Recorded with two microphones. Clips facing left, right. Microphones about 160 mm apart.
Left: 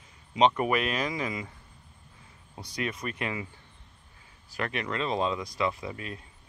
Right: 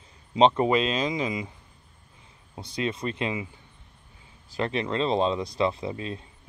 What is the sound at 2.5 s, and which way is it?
Speech, 25° right (ahead or behind).